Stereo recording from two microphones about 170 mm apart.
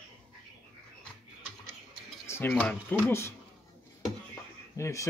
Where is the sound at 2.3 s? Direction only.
15° left (ahead or behind).